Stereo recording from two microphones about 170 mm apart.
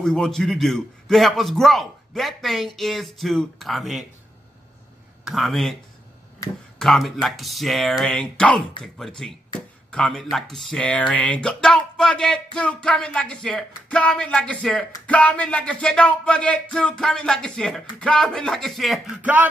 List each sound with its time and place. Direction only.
0.0 s speech: 5° left (ahead or behind)
5.2 s speech: centre (ahead or behind)
6.4 s a sound: 20° left (ahead or behind)
6.8 s speech: centre (ahead or behind)